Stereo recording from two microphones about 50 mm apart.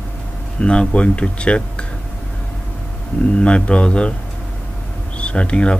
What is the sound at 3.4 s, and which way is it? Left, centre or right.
Speech, left.